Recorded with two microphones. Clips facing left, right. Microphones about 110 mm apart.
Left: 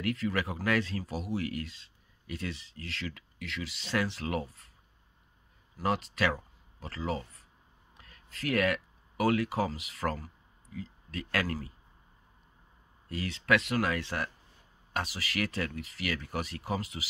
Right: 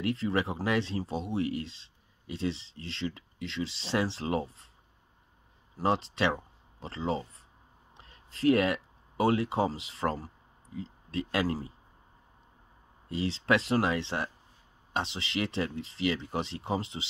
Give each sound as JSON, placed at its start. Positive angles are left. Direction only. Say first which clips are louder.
{"t": 0.0, "sound": "speech", "louder": "right 2 dB", "side_deg": -30}
{"t": 5.8, "sound": "speech", "louder": "right 2 dB", "side_deg": -30}
{"t": 13.1, "sound": "speech", "louder": "right 1 dB", "side_deg": -25}